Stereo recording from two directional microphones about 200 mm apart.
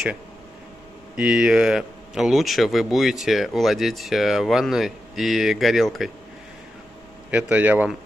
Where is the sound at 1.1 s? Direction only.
5° right (ahead or behind).